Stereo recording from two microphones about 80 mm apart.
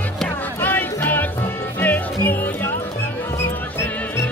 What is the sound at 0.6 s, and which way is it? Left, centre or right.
Music, left.